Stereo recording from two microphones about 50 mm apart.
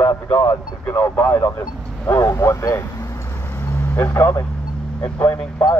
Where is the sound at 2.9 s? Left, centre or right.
Left.